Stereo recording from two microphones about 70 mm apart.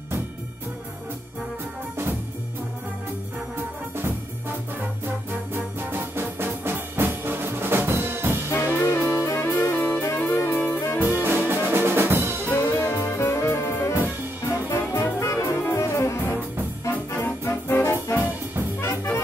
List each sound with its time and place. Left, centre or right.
5.0 s music: right
8.5 s music: left
11.2 s music: right
11.7 s drum: right
12.4 s music: left
12.9 s music: left
13.2 s music: left
14.4 s brass instrument: left
16.8 s music: left